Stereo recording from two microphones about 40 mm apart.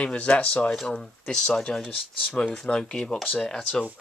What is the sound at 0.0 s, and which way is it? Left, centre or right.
Speech, left.